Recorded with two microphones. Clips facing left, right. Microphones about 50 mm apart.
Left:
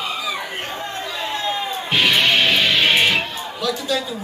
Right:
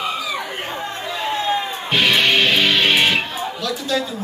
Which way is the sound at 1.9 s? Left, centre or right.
Centre.